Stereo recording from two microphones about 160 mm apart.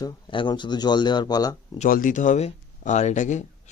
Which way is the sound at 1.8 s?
55° left (ahead or behind).